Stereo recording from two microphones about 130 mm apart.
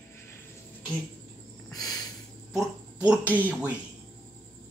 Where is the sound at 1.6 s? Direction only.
30° left (ahead or behind).